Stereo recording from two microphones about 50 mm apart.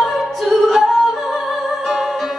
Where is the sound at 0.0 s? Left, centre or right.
Centre.